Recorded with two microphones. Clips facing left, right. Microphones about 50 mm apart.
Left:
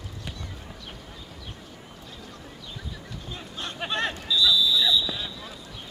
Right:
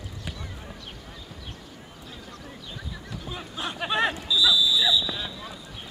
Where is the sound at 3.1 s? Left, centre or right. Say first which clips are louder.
Right 2 dB; centre.